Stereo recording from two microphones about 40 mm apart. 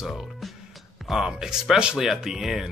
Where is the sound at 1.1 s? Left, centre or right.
Centre.